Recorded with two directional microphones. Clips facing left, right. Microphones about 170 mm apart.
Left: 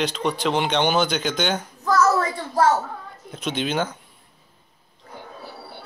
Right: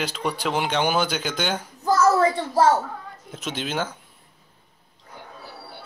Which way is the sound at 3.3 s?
5° right (ahead or behind).